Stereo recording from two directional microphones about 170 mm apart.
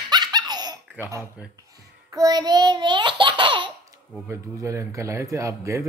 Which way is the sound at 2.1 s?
20° right (ahead or behind).